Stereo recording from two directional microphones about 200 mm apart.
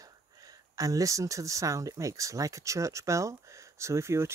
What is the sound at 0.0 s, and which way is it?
Speech, 15° right (ahead or behind).